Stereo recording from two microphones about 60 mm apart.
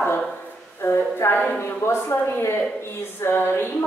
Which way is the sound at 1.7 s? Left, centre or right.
Left.